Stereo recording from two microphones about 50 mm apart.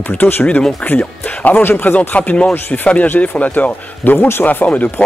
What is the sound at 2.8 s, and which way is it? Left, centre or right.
Speech, left.